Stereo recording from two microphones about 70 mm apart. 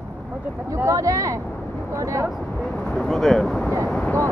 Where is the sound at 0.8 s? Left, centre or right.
Right.